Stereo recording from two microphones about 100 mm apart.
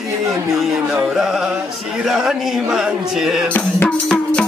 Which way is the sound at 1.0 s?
5° right (ahead or behind).